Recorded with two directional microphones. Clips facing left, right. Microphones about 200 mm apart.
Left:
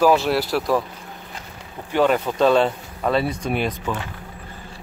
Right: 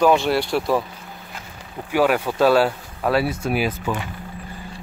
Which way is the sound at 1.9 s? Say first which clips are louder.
Even; 5° right (ahead or behind).